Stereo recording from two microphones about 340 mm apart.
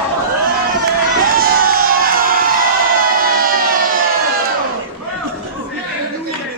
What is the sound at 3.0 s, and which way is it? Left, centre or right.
Siren, right.